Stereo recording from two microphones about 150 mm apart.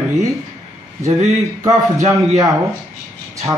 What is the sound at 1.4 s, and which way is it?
Speech, 20° right (ahead or behind).